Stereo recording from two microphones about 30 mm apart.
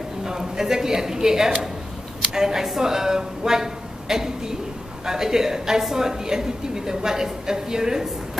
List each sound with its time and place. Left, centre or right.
0.2 s a woman's voice: centre